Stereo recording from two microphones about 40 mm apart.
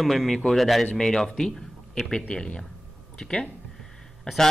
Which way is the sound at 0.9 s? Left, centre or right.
Centre.